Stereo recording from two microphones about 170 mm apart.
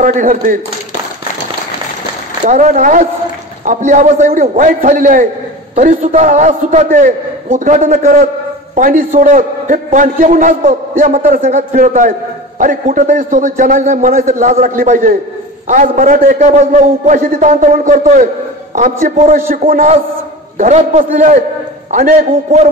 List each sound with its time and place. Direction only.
0.0 s a man's voice: 50° right (ahead or behind)
2.4 s a man's voice: 45° right (ahead or behind)